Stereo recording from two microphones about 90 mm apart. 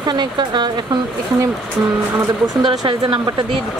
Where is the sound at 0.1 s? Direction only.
55° right (ahead or behind).